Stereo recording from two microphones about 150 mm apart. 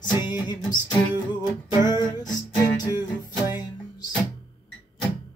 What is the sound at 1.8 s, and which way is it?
Music, 30° left (ahead or behind).